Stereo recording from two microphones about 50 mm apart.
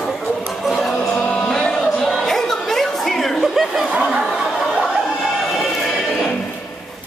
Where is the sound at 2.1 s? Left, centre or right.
Centre.